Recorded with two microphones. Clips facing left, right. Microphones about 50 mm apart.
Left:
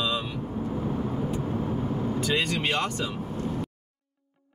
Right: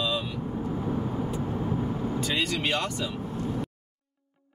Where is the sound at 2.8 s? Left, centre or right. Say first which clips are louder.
Left 1 dB; left.